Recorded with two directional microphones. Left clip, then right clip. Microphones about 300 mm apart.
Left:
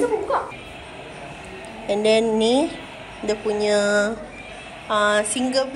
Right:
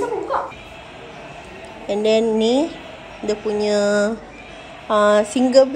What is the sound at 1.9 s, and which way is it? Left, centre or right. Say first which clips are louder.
A woman's voice: right 1 dB; centre.